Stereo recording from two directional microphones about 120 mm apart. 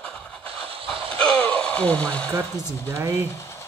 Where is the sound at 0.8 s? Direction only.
45° right (ahead or behind).